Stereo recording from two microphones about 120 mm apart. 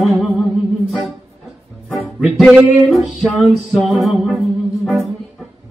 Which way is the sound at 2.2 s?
5° right (ahead or behind).